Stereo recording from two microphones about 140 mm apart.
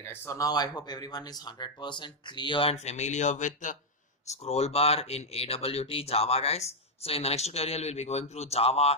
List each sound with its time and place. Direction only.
0.0 s speech: 15° left (ahead or behind); by 2.7 s 35° left (ahead or behind)
2.7 s speech: 55° left (ahead or behind)
4.3 s speech: 50° left (ahead or behind)